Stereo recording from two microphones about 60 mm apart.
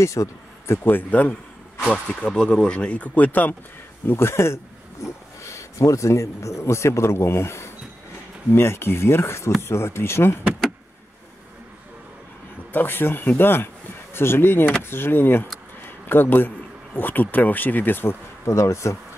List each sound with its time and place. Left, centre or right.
0.0 s a man's voice: left
0.8 s speech: left
2.0 s speech: centre
4.0 s speech: left
12.7 s speech: left
18.4 s speech: left